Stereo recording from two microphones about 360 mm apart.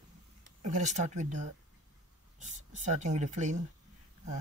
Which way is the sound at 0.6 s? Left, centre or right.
Centre.